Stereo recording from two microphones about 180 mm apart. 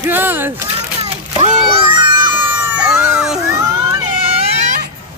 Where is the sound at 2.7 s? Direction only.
5° right (ahead or behind).